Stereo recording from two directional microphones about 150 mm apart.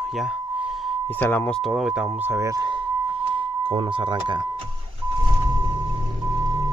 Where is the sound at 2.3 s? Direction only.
20° right (ahead or behind).